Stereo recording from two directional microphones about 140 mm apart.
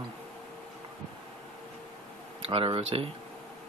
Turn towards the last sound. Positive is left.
turn(degrees=-40)  # may be behind; listen again after turning